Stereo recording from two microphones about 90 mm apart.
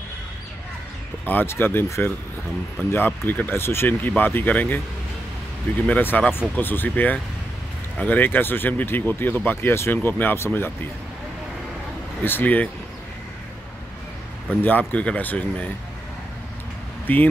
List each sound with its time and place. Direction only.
1.2 s speech: 25° left (ahead or behind)
12.2 s speech: 20° left (ahead or behind)
14.6 s speech: 20° left (ahead or behind)
17.1 s speech: 20° left (ahead or behind)